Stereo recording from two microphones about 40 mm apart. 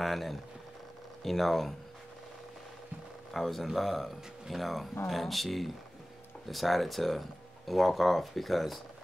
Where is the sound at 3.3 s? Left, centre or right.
Centre.